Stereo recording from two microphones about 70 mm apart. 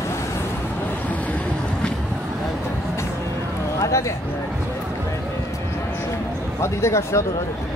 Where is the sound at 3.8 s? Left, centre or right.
Left.